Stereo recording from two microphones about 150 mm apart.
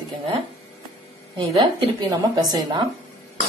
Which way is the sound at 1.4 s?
30° right (ahead or behind).